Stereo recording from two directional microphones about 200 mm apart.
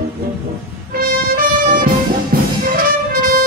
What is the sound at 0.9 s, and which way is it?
Music, 45° right (ahead or behind).